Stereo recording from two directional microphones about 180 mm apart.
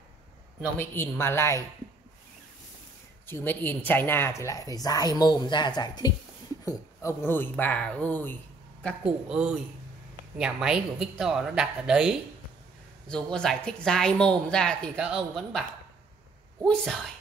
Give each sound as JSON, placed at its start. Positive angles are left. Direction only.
{"t": 0.7, "sound": "speech", "side_deg": 10}
{"t": 3.3, "sound": "a woman's voice", "side_deg": 10}
{"t": 9.0, "sound": "a man's voice", "side_deg": -5}
{"t": 16.6, "sound": "a woman's voice", "side_deg": 5}